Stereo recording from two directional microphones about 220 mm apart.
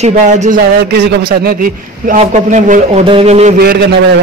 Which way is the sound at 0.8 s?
50° right (ahead or behind).